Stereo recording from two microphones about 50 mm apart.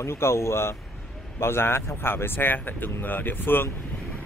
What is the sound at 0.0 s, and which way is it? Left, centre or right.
Speech, left.